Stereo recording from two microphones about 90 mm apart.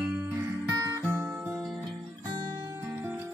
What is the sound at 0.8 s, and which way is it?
Music, 30° right (ahead or behind).